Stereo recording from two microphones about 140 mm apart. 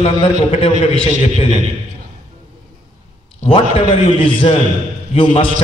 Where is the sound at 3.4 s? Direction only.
40° left (ahead or behind).